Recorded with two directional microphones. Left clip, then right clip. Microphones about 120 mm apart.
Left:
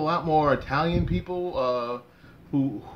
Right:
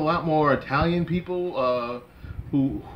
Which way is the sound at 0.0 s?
20° left (ahead or behind).